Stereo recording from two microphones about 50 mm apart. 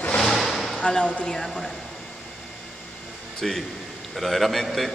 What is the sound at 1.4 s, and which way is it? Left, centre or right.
Speech, centre.